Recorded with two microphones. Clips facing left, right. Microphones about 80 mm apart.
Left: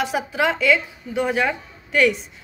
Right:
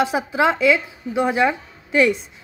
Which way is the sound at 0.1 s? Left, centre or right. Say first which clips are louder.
Right 3 dB; right.